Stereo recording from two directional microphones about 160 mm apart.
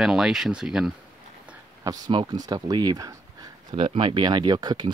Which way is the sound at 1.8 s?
25° right (ahead or behind).